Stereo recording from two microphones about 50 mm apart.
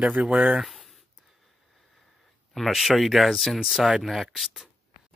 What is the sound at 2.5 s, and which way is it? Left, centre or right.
Speech, centre.